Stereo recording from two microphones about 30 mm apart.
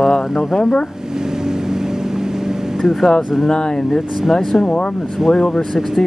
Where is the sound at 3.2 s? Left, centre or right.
Centre.